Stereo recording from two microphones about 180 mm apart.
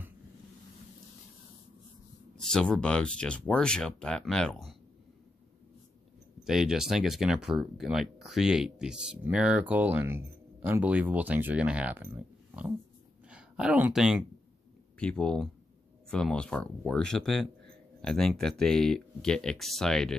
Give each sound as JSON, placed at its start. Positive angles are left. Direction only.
{"t": 2.3, "sound": "speech", "side_deg": 5}
{"t": 6.4, "sound": "speech", "side_deg": 0}